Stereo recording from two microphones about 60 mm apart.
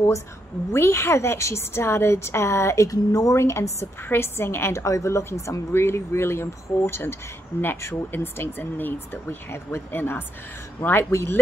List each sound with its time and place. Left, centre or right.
0.7 s a woman's voice: left
2.9 s a woman's voice: left
4.0 s a woman's voice: left
4.8 s a woman's voice: left
5.7 s a woman's voice: left
11.1 s a woman's voice: left